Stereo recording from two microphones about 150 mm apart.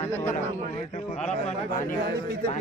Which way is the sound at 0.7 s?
50° left (ahead or behind).